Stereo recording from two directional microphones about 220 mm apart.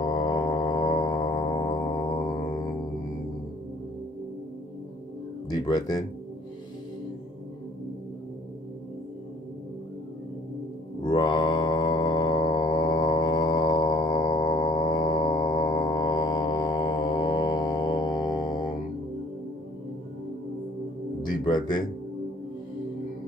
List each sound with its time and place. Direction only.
0.0 s music: 20° left (ahead or behind)
5.5 s speech: 20° left (ahead or behind)
11.1 s mantra: 20° left (ahead or behind)
21.2 s music: 20° left (ahead or behind)